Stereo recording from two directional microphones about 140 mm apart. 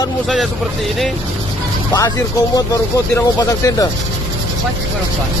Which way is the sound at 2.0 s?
25° left (ahead or behind).